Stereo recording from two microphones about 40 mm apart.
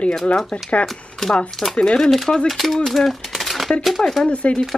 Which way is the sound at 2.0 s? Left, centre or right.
Centre.